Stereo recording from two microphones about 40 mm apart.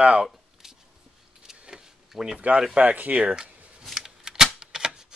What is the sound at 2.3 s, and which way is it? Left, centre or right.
Speech, right.